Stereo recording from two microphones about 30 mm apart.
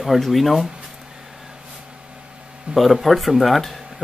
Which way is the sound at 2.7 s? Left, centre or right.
Centre.